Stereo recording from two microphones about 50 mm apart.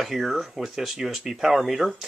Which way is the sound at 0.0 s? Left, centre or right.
Centre.